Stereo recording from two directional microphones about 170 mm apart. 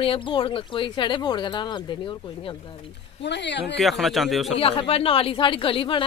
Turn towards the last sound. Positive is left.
turn(degrees=30)  # may be behind; listen again after turning